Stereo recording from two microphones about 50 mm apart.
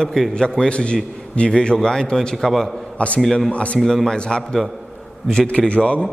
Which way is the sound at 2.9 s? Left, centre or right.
Left.